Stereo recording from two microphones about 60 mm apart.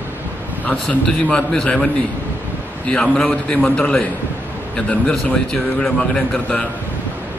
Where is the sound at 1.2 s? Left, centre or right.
Left.